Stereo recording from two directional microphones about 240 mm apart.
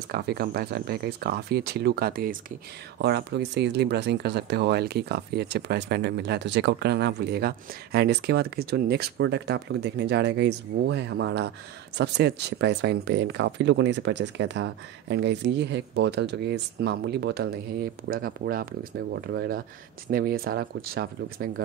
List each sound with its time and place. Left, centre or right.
0.1 s speech: right